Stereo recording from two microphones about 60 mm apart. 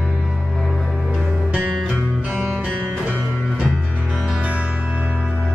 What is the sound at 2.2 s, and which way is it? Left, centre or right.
Music, right.